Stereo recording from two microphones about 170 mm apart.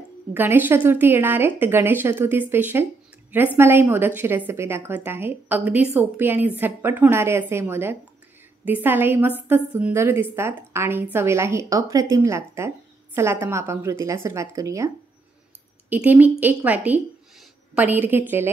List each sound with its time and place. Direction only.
0.3 s a woman's voice: 10° right (ahead or behind)
15.9 s speech: 10° right (ahead or behind)